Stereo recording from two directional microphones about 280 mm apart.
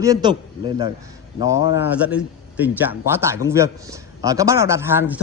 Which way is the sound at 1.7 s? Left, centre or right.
Centre.